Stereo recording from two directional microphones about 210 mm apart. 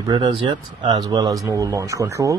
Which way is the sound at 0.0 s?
20° right (ahead or behind).